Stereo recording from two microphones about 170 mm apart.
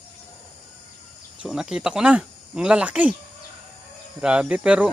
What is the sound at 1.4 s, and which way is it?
Speech, 5° right (ahead or behind).